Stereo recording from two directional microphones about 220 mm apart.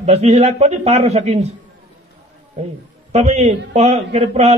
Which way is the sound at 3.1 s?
30° right (ahead or behind).